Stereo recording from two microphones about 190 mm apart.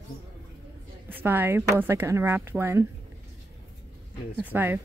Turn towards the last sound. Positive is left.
turn(degrees=-10)  # may be behind; listen again after turning